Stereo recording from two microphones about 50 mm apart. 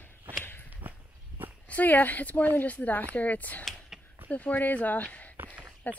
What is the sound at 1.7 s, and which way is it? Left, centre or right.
A woman's voice, left.